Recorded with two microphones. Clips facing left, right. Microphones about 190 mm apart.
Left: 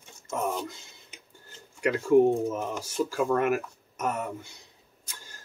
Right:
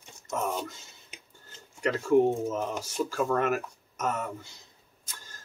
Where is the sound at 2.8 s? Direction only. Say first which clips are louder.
Left 2 dB; 15° left (ahead or behind).